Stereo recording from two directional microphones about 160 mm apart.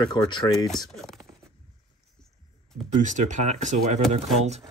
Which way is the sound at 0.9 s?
Centre (ahead or behind).